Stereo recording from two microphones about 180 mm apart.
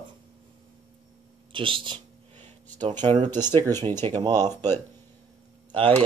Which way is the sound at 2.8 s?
40° right (ahead or behind).